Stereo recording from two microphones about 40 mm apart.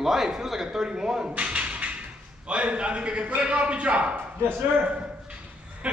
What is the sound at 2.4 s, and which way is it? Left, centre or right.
A man's voice, right.